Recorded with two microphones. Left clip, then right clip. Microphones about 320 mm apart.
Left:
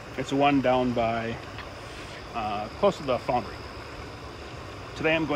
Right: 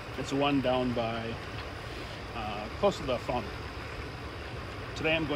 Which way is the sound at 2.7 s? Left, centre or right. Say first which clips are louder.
Left 4 dB; left.